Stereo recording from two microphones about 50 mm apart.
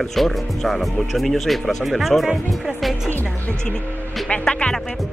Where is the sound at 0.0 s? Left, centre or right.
Centre.